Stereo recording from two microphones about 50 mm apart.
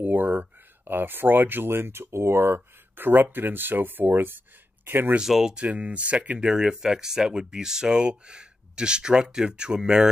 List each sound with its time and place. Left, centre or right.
0.0 s speech: right
3.0 s speech: right
5.2 s speech: centre
5.7 s speech: right